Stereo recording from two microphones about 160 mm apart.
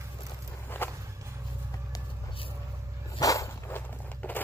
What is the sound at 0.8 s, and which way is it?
Walk, 15° left (ahead or behind).